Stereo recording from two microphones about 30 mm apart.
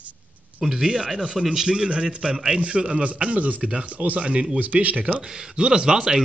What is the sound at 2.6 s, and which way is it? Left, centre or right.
A man's voice, right.